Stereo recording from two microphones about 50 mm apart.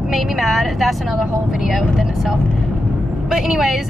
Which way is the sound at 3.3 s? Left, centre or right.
Centre.